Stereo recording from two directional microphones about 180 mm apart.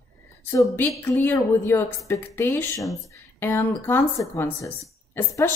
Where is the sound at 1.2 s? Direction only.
15° left (ahead or behind).